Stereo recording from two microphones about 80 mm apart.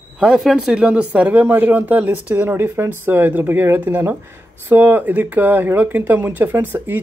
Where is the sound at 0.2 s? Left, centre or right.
Centre.